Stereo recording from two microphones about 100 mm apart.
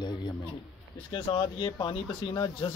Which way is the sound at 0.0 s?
50° left (ahead or behind).